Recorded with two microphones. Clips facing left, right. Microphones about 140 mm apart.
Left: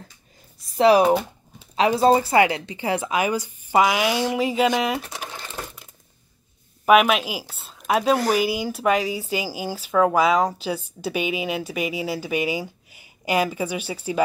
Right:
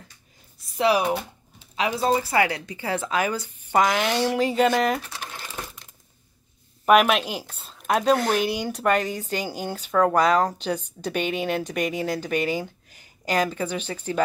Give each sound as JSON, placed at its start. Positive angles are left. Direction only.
{"t": 0.7, "sound": "a woman's voice", "side_deg": 35}
{"t": 5.2, "sound": "a sound", "side_deg": 5}
{"t": 6.9, "sound": "a woman's voice", "side_deg": 0}